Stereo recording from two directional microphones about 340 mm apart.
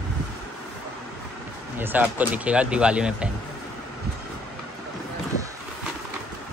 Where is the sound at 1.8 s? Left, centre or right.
Centre.